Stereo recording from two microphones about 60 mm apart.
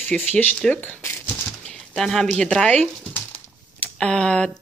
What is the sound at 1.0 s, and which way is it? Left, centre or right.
Speech, left.